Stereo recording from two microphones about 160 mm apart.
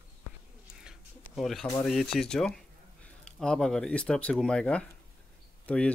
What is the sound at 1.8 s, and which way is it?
Speech, centre (ahead or behind).